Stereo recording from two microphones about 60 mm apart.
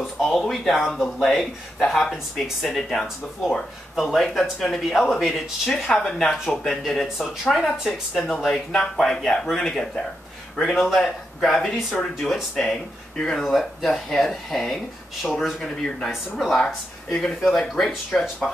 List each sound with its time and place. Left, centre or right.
0.0 s speech: centre
16.5 s speech: centre